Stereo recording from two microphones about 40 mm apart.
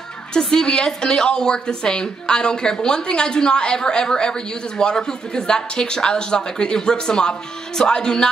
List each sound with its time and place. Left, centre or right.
0.3 s a woman's voice: centre